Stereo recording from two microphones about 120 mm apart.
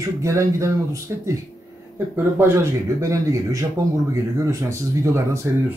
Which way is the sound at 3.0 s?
25° right (ahead or behind).